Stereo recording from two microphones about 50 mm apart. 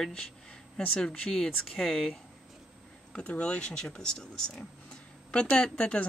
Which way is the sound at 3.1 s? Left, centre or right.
Left.